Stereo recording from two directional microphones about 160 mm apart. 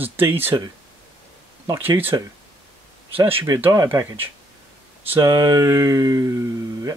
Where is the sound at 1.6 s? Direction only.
20° right (ahead or behind).